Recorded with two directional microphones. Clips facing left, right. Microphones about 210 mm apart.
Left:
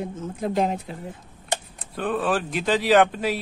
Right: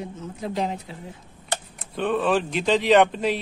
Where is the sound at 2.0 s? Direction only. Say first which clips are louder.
Right 2 dB; centre (ahead or behind).